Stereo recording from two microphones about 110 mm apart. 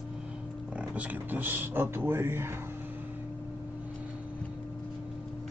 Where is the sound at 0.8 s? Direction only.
10° right (ahead or behind).